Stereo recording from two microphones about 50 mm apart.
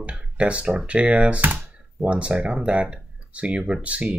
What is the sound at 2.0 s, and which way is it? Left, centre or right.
Speech, right.